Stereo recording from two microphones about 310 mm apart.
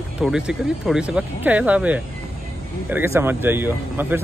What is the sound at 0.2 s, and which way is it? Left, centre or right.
Speech, centre.